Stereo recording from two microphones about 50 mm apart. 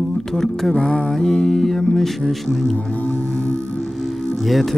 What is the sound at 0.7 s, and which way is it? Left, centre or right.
Music, centre.